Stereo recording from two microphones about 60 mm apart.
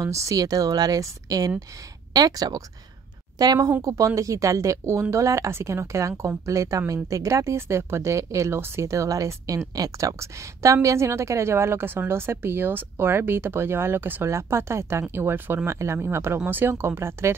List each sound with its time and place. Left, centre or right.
0.0 s speech: right
3.8 s speech: right
5.5 s a woman's voice: right
8.5 s speech: right
8.8 s a woman's voice: right
14.3 s a woman's voice: right
15.7 s a woman's voice: right